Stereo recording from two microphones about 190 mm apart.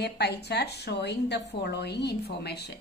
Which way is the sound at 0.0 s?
60° left (ahead or behind).